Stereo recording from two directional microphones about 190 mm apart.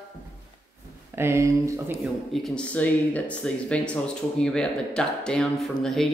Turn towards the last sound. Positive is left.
turn(degrees=0)  # may be behind; listen again after turning